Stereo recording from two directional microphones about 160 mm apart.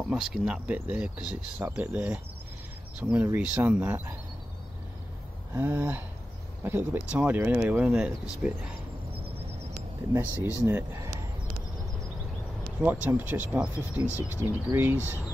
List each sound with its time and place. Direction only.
0.1 s speech: 5° right (ahead or behind)
5.5 s speech: 15° right (ahead or behind)
10.1 s speech: 15° right (ahead or behind)
12.8 s speech: 10° right (ahead or behind)